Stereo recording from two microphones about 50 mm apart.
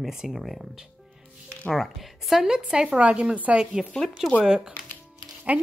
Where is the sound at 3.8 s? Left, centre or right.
Centre.